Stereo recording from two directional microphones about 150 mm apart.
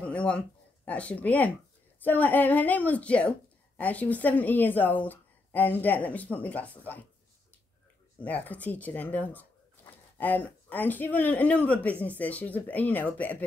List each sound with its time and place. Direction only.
0.0 s a sound: 10° left (ahead or behind)
0.8 s speech: 10° left (ahead or behind)
8.2 s speech: 10° left (ahead or behind)